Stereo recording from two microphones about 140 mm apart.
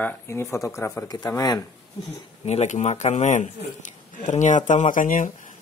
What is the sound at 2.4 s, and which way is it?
A man's voice, 55° left (ahead or behind).